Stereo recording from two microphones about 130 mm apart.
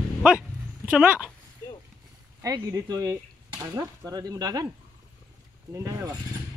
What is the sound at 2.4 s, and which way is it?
Speech, 25° right (ahead or behind).